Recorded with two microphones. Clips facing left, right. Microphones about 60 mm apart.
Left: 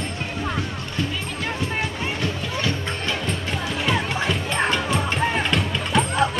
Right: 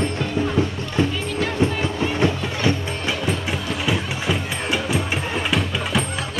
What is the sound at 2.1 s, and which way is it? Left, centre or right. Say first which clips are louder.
Music: right 5 dB; right.